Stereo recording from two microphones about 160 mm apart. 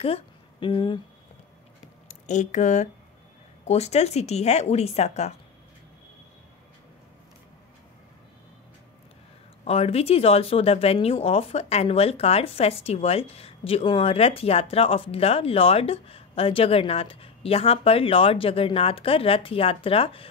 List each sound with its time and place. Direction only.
0.0 s a woman's voice: 35° left (ahead or behind)
2.0 s a woman's voice: 50° left (ahead or behind)
9.7 s speech: 40° left (ahead or behind)